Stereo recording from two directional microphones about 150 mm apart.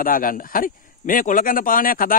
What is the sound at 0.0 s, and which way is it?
A man's voice, 70° left (ahead or behind).